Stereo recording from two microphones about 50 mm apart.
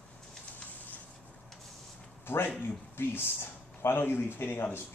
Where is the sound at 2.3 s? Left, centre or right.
Left.